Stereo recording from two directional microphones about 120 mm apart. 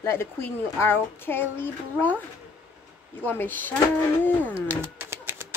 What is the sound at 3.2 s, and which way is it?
Speech, 15° left (ahead or behind).